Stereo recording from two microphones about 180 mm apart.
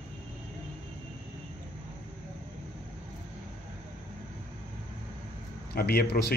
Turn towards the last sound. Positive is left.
turn(degrees=60)  # may be behind; listen again after turning